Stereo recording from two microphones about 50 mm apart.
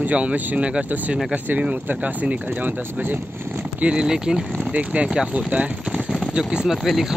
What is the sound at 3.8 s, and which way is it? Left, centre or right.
Speech, centre.